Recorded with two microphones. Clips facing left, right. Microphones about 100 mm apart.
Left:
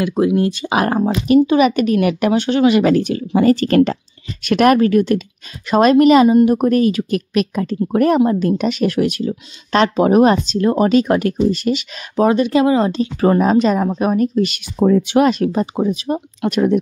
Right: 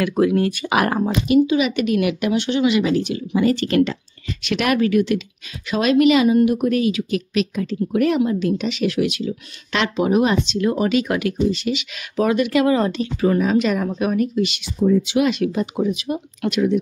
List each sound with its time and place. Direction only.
0.2 s speech: 25° left (ahead or behind)
1.2 s a woman's voice: 45° left (ahead or behind)
12.2 s speech: 30° left (ahead or behind)
14.8 s speech: 75° left (ahead or behind)
15.1 s speech: 40° left (ahead or behind)